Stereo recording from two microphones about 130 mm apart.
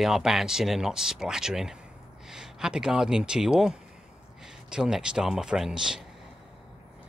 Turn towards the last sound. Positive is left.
turn(degrees=-5)  # may be behind; listen again after turning